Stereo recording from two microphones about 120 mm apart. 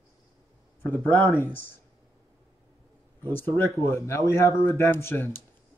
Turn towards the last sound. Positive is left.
turn(degrees=20)  # may be behind; listen again after turning